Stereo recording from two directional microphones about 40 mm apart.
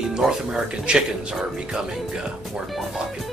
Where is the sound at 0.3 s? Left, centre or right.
Right.